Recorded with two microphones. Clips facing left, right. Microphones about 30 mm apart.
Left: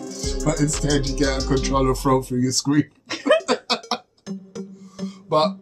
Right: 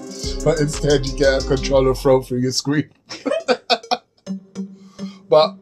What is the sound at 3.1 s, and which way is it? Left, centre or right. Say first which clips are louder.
Speech: left 5 dB; left.